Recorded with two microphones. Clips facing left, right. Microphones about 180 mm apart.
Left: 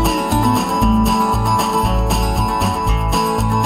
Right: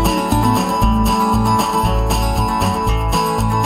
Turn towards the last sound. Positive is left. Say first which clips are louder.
# even
turn(degrees=0)  # may be behind; listen again after turning